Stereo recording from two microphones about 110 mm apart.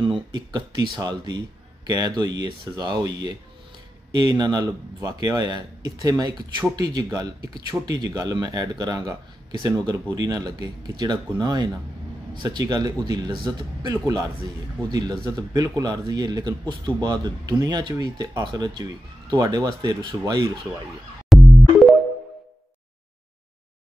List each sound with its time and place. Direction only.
0.0 s speech: 45° right (ahead or behind)
21.3 s music: centre (ahead or behind)